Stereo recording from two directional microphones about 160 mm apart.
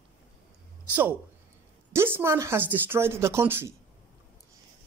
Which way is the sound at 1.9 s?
15° right (ahead or behind).